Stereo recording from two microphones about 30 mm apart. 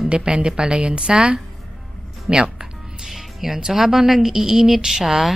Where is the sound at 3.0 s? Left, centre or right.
Centre.